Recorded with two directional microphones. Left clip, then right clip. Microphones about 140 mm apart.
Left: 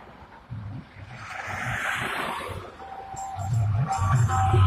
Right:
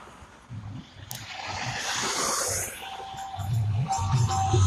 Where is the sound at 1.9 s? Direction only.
25° left (ahead or behind).